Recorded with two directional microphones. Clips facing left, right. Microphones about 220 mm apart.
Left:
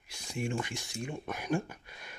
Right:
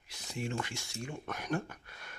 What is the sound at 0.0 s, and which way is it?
Speech, 10° left (ahead or behind).